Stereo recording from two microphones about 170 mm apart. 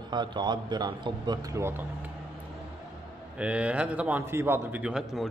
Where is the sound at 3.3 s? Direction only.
5° right (ahead or behind).